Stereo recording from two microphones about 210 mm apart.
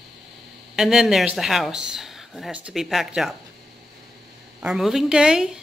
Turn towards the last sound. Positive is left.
turn(degrees=-5)  # may be behind; listen again after turning